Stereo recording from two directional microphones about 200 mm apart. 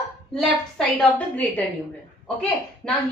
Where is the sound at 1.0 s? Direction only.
5° left (ahead or behind).